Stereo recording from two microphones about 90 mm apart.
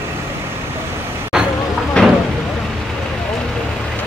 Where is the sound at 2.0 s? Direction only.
10° left (ahead or behind).